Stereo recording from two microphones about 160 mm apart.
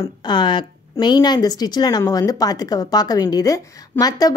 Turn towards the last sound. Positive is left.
turn(degrees=20)  # may be behind; listen again after turning